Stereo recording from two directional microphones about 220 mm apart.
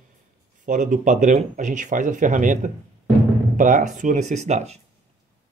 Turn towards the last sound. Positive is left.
turn(degrees=-30)  # may be behind; listen again after turning